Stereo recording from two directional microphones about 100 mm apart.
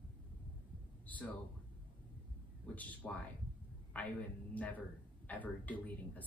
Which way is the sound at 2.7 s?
15° left (ahead or behind).